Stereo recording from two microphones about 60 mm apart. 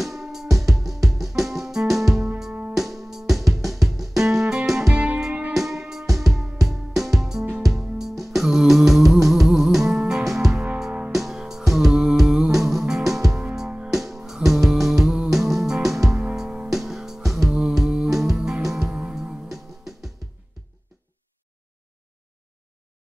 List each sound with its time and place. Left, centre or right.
0.0 s music: centre
4.9 s music: right
5.5 s music: centre
13.9 s music: centre
19.5 s music: centre